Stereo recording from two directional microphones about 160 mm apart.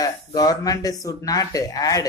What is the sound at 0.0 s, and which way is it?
Speech, 20° left (ahead or behind).